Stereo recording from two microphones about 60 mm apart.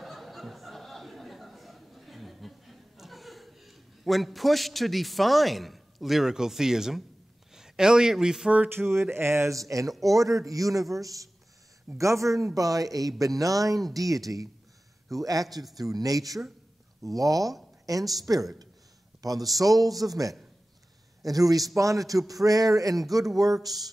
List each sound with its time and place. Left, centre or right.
0.0 s a sound: centre
7.5 s speech: centre
8.6 s speech: right
9.6 s a man's voice: right
12.0 s a man's voice: right
15.8 s a man's voice: right